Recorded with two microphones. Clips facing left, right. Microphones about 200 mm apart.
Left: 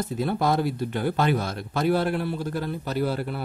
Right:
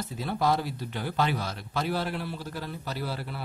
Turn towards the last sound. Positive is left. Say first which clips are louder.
# left 8 dB
turn(degrees=50)  # may be behind; listen again after turning